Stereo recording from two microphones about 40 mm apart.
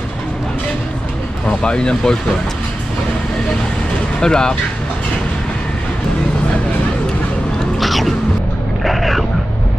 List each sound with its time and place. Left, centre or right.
1.6 s speech: left
4.2 s speech: centre
7.8 s music: centre
8.8 s a sound: centre